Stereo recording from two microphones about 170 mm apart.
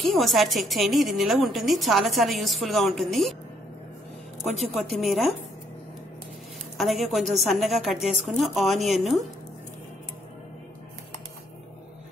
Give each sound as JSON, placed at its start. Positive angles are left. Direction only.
{"t": 0.0, "sound": "a woman's voice", "side_deg": 0}
{"t": 4.7, "sound": "a woman's voice", "side_deg": 0}
{"t": 6.8, "sound": "a woman's voice", "side_deg": 0}